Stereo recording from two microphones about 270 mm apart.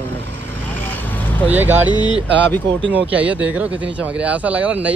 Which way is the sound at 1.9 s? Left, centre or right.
Centre.